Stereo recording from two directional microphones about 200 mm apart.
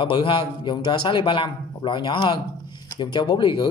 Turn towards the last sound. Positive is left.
turn(degrees=25)  # may be behind; listen again after turning